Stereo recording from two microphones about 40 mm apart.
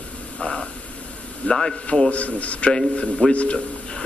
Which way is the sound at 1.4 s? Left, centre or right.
Left.